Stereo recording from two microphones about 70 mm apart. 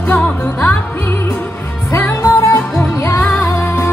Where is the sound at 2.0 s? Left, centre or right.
Left.